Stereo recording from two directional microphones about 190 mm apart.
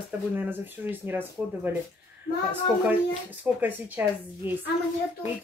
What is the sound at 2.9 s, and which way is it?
Speech, 10° right (ahead or behind).